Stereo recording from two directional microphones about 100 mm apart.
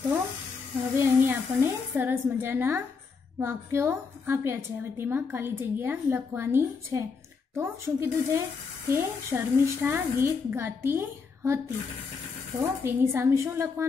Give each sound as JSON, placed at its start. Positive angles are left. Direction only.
{"t": 0.9, "sound": "a woman's voice", "side_deg": -25}
{"t": 12.8, "sound": "a woman's voice", "side_deg": -25}